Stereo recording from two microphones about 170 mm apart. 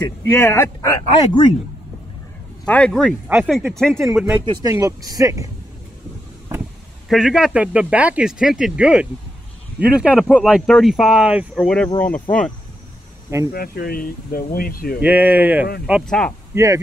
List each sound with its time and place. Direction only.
0.0 s speech: 15° left (ahead or behind)
2.6 s speech: 5° left (ahead or behind)
4.6 s speech: 20° right (ahead or behind)
7.1 s speech: centre (ahead or behind)
13.5 s speech: 60° left (ahead or behind)
15.0 s speech: 10° right (ahead or behind)
16.1 s speech: 5° left (ahead or behind)
16.5 s speech: 20° right (ahead or behind)